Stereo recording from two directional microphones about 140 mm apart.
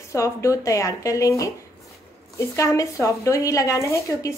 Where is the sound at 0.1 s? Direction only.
20° left (ahead or behind).